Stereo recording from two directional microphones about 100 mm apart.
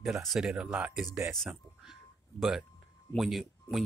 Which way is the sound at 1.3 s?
5° right (ahead or behind).